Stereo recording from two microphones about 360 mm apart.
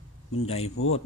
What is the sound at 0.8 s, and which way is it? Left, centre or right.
Speech, left.